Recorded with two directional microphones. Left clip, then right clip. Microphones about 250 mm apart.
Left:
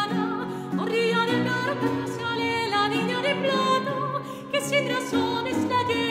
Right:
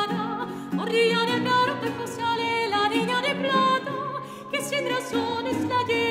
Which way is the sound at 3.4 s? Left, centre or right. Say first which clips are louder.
Right 2 dB; right.